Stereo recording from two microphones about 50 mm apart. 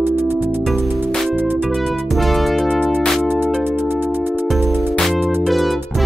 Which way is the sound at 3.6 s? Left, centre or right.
Right.